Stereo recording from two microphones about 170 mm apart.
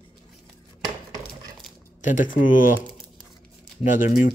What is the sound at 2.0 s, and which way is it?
Speech, 50° left (ahead or behind).